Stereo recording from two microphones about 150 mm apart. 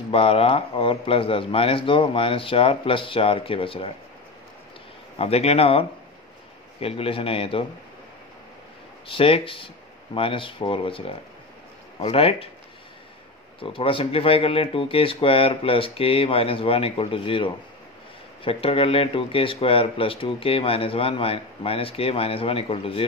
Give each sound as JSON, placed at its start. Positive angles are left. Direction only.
{"t": 0.1, "sound": "speech", "side_deg": 40}
{"t": 5.1, "sound": "speech", "side_deg": 40}
{"t": 9.0, "sound": "speech", "side_deg": 40}
{"t": 13.6, "sound": "speech", "side_deg": 35}